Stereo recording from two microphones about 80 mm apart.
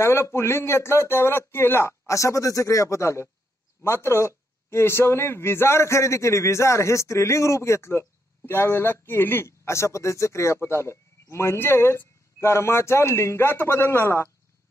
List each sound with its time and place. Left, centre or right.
0.0 s speech: left